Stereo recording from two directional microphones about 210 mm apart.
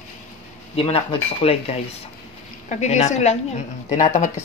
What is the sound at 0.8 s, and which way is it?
Speech, 25° left (ahead or behind).